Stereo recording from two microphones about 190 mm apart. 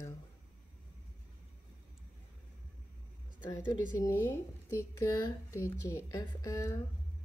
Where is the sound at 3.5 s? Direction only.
20° left (ahead or behind).